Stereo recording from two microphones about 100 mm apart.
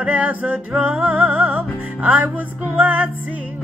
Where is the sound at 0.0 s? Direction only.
15° right (ahead or behind).